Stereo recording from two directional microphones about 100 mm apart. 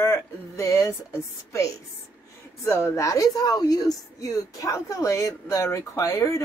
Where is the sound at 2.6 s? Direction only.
30° left (ahead or behind).